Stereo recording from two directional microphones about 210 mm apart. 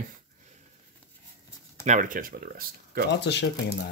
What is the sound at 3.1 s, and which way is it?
Speech, 55° left (ahead or behind).